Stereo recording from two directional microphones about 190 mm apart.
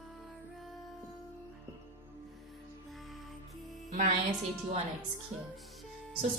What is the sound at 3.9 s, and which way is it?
Speech, 40° right (ahead or behind).